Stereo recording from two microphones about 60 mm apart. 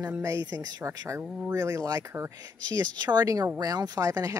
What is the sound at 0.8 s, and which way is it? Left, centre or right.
Speech, right.